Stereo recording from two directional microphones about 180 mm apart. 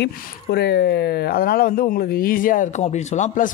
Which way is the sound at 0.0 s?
65° left (ahead or behind).